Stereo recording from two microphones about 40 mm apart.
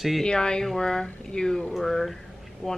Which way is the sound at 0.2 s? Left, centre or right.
Centre.